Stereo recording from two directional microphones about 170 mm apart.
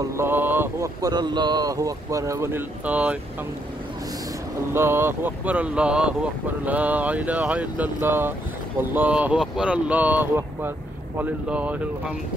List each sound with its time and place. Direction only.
0.0 s speech: 15° right (ahead or behind)
4.7 s speech: 15° right (ahead or behind)